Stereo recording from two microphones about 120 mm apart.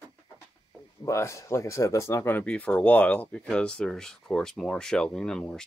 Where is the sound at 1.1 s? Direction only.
25° left (ahead or behind).